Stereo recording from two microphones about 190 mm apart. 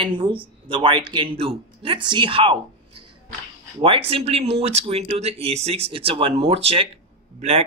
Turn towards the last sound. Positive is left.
turn(degrees=-35)  # may be behind; listen again after turning